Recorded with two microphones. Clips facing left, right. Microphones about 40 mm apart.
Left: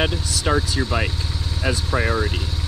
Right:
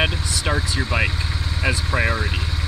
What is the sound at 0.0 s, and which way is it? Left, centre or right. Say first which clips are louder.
Vehicle: even; centre.